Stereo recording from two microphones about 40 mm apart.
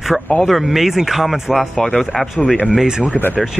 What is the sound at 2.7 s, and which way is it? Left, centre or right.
Speech, centre.